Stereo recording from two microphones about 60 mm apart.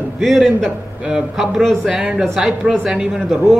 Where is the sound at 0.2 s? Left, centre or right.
Centre.